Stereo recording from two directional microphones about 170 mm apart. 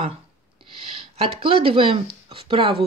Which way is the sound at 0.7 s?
35° right (ahead or behind).